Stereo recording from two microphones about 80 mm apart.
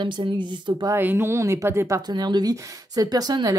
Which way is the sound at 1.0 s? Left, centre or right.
Right.